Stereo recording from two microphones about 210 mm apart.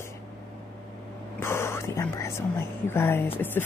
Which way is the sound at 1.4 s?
10° left (ahead or behind).